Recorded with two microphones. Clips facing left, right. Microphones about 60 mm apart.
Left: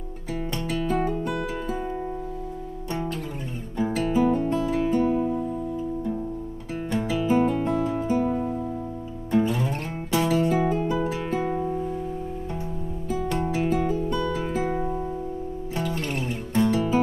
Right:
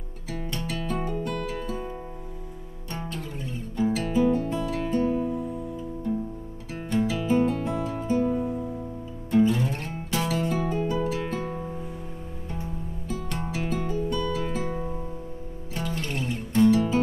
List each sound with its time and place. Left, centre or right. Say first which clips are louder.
0.3 s music: left 4 dB; centre
2.9 s music: left 4 dB; centre
6.7 s music: even; centre
13.3 s music: left 6 dB; centre
16.0 s music: left 2 dB; centre